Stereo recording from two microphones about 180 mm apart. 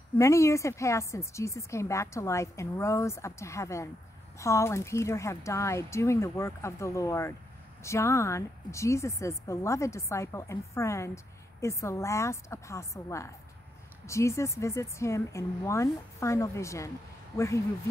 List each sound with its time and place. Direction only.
0.2 s speech: 15° left (ahead or behind)